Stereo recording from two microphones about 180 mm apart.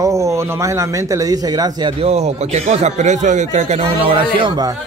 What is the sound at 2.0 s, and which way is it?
Speech, 35° right (ahead or behind).